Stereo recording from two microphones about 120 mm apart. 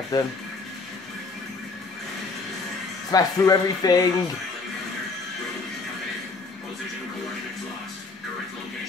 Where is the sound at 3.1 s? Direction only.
30° left (ahead or behind).